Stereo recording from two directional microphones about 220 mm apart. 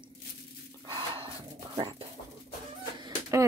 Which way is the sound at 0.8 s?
20° right (ahead or behind).